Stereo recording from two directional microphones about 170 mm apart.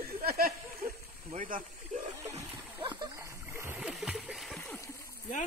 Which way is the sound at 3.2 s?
15° right (ahead or behind).